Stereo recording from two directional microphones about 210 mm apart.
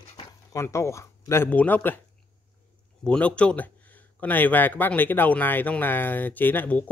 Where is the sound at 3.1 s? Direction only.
5° left (ahead or behind).